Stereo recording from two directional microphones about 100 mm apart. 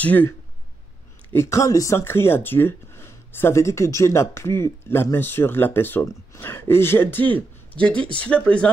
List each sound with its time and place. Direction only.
0.0 s speech: 15° left (ahead or behind)
1.3 s speech: 30° left (ahead or behind); by 8.6 s 10° left (ahead or behind)